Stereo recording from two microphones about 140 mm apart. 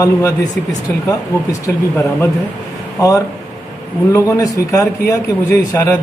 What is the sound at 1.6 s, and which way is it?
Speech, 25° left (ahead or behind).